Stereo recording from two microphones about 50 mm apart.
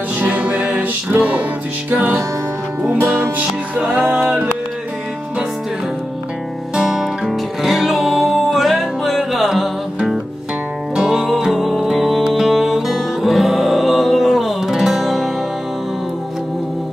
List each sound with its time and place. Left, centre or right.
0.2 s music: right
3.7 s music: centre
6.7 s music: centre
7.2 s music: centre
11.0 s music: centre